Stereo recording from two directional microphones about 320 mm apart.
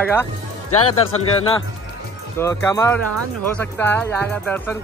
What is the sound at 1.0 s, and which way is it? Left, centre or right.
Speech, centre.